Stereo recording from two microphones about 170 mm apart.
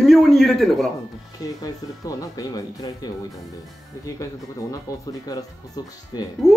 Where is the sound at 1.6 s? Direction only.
20° left (ahead or behind).